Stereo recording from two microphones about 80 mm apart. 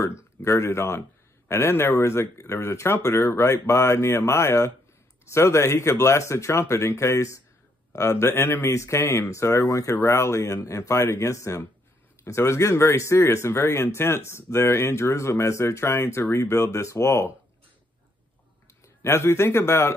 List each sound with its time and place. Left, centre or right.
0.0 s speech: left
19.0 s speech: left